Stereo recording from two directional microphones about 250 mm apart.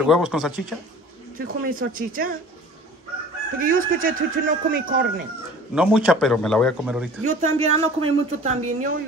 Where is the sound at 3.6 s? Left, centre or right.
Right.